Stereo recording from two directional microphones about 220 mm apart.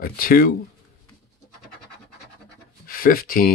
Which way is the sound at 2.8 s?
40° left (ahead or behind).